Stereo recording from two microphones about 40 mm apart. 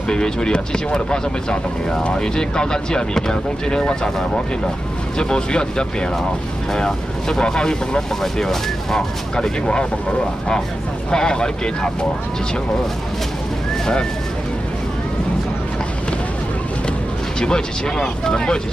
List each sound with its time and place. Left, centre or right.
0.1 s speech: left
17.4 s speech: centre